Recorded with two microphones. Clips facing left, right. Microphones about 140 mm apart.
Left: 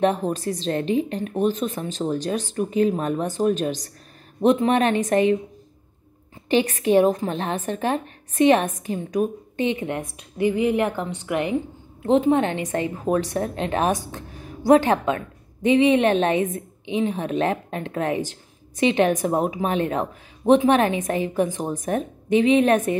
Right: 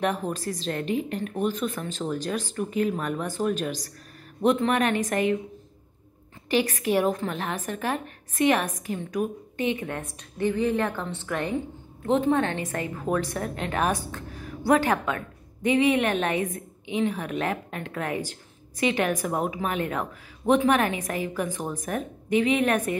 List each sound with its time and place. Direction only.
0.0 s a woman's voice: 20° left (ahead or behind)
6.5 s a woman's voice: 25° left (ahead or behind)